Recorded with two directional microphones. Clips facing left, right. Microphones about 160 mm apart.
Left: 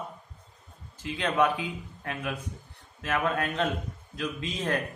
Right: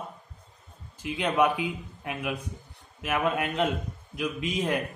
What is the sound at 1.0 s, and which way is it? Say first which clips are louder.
Speech: right 1 dB; 15° right (ahead or behind).